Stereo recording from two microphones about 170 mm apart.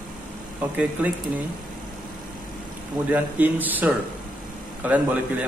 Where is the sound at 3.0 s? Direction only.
10° right (ahead or behind).